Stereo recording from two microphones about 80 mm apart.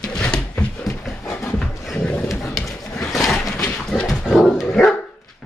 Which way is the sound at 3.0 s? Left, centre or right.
Centre.